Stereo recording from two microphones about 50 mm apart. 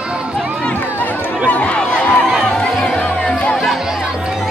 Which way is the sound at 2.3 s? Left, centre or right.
Centre.